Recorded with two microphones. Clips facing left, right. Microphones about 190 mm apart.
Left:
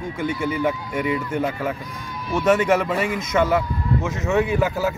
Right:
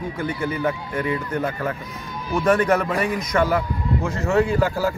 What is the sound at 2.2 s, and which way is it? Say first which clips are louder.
Speech: left 1 dB; 25° left (ahead or behind).